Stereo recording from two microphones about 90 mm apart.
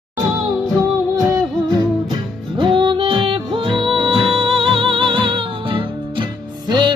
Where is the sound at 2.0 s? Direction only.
65° right (ahead or behind).